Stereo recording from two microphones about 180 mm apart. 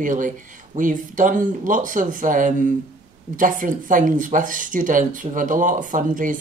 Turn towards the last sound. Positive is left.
turn(degrees=-45)  # may be behind; listen again after turning